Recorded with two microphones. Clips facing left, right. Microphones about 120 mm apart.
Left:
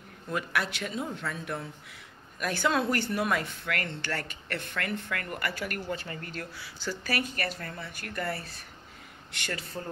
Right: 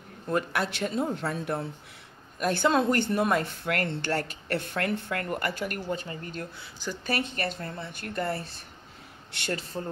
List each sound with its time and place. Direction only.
0.7 s speech: 35° right (ahead or behind)
3.6 s speech: 40° right (ahead or behind)
5.5 s speech: 20° right (ahead or behind)